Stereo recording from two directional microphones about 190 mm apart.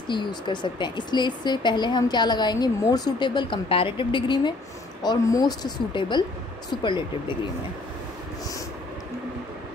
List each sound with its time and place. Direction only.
0.1 s a woman's voice: 25° left (ahead or behind)